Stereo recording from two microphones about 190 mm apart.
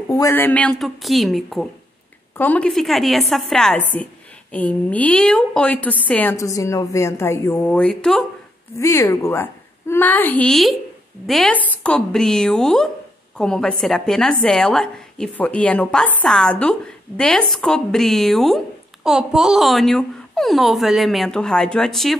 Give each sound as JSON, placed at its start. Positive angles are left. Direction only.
{"t": 0.1, "sound": "a woman's voice", "side_deg": 15}
{"t": 8.7, "sound": "a woman's voice", "side_deg": 15}